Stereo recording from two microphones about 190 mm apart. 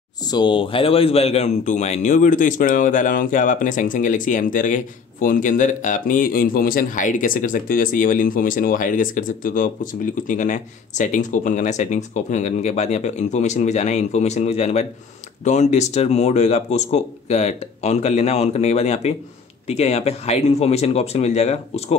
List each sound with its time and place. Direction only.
0.3 s speech: 25° left (ahead or behind)